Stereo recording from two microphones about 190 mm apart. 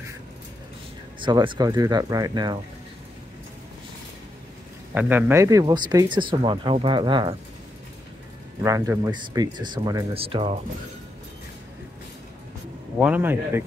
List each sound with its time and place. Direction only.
1.2 s speech: 25° right (ahead or behind)
4.9 s speech: 10° right (ahead or behind); by 7.3 s 25° right (ahead or behind)
8.6 s speech: 15° right (ahead or behind)
13.0 s speech: 10° right (ahead or behind)